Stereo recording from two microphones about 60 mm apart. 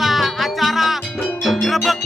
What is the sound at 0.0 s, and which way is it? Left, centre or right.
Music, centre.